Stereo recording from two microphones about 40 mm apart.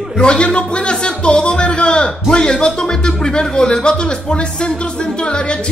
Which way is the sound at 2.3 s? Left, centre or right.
Left.